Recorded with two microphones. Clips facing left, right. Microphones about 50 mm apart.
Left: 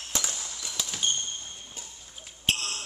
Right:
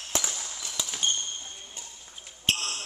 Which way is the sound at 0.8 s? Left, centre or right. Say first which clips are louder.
Even; centre.